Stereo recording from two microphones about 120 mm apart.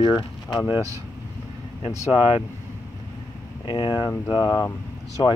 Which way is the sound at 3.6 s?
40° left (ahead or behind).